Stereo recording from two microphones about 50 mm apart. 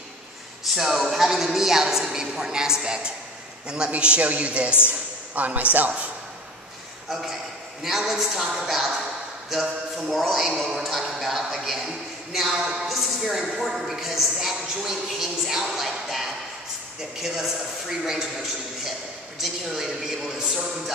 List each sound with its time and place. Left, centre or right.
0.7 s a woman's voice: centre; by 5.9 s right
7.1 s a man's voice: centre
19.4 s a woman's voice: centre